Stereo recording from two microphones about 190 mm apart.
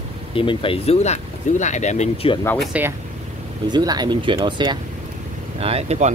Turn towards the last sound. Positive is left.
turn(degrees=-35)  # may be behind; listen again after turning